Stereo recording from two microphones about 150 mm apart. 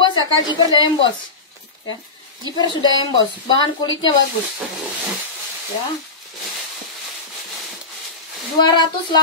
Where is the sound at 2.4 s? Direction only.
30° left (ahead or behind).